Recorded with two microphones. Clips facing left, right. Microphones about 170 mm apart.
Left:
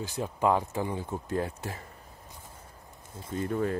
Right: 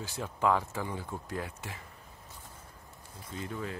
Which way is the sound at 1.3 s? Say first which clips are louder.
Left 9 dB; 35° left (ahead or behind).